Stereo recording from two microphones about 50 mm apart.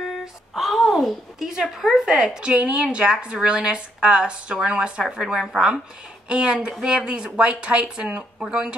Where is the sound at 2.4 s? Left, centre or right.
Right.